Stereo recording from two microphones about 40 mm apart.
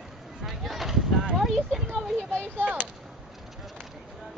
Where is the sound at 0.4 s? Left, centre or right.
Centre.